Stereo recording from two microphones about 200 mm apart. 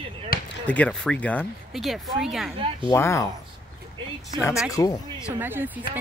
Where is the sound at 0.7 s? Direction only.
5° left (ahead or behind).